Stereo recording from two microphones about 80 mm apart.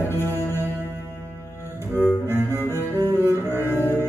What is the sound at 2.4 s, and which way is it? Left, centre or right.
Music, left.